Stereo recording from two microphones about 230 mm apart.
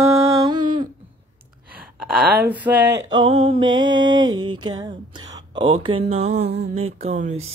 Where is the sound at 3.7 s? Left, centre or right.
Right.